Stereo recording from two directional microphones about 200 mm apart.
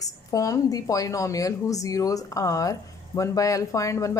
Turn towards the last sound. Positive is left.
turn(degrees=15)  # may be behind; listen again after turning